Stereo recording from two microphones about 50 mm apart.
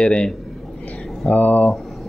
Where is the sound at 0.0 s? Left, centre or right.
Left.